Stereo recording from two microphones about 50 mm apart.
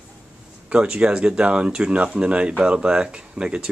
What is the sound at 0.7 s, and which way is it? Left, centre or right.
Speech, right.